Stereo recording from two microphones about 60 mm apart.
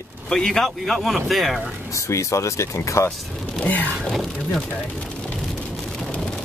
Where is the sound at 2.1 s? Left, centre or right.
Left.